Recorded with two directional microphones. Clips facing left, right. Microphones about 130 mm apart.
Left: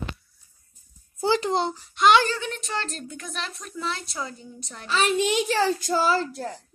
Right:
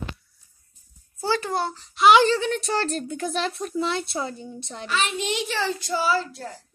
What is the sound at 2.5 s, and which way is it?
A woman's voice, 35° right (ahead or behind).